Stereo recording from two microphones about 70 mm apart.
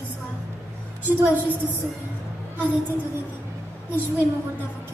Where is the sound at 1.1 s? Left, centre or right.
Right.